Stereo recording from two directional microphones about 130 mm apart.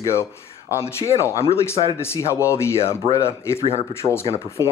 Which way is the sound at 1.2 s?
20° left (ahead or behind).